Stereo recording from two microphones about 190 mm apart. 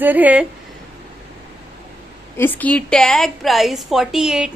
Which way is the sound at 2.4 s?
10° left (ahead or behind).